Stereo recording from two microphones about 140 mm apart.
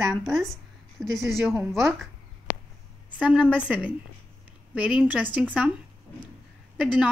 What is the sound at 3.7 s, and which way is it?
Speech, 10° right (ahead or behind).